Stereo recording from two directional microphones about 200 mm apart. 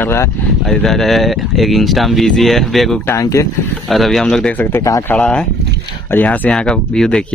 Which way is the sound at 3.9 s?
Centre (ahead or behind).